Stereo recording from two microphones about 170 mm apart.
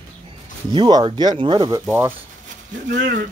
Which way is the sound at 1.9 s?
15° right (ahead or behind).